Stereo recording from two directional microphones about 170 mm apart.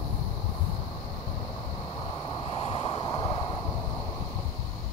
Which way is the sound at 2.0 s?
25° left (ahead or behind).